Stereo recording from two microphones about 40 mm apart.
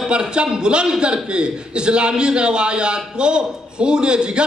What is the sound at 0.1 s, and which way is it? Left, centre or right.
A man's voice, right.